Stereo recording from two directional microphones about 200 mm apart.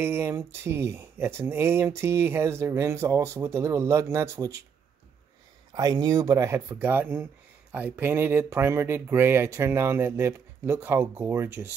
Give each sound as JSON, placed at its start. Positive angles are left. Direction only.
{"t": 0.0, "sound": "speech", "side_deg": -10}
{"t": 5.7, "sound": "speech", "side_deg": -20}